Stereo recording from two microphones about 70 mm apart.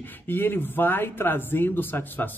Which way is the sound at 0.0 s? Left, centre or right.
Left.